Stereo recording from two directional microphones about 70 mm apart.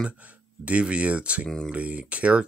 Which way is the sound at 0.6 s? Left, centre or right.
Centre.